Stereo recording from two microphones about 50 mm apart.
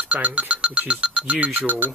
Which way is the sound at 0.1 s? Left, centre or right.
Right.